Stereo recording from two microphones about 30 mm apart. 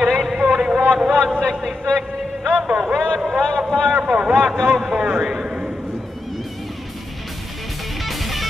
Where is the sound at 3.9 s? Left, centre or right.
Right.